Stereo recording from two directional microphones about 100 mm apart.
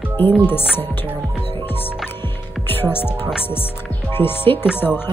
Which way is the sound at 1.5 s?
20° left (ahead or behind).